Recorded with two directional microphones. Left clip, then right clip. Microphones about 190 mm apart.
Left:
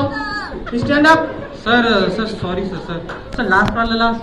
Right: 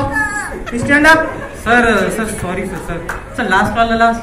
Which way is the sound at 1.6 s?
55° right (ahead or behind).